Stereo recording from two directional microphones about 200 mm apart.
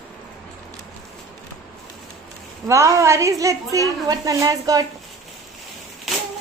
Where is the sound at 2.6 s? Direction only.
15° right (ahead or behind).